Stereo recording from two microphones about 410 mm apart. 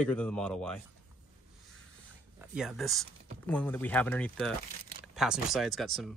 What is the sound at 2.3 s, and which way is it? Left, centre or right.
Speech, centre.